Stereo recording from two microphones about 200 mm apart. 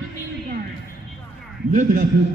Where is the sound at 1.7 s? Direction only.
40° right (ahead or behind).